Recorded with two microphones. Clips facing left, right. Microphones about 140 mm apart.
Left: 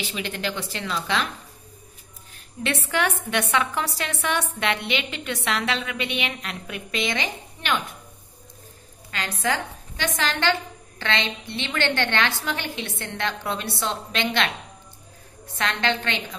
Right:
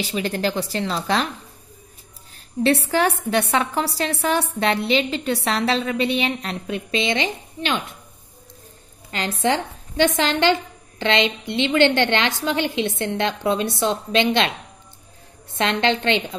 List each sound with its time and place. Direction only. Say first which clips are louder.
0.1 s a woman's voice: right 7 dB; 40° right (ahead or behind)
2.6 s a woman's voice: right 6 dB; 35° right (ahead or behind)
9.4 s a woman's voice: right 5 dB; 25° right (ahead or behind)
15.5 s a woman's voice: right 5 dB; 25° right (ahead or behind)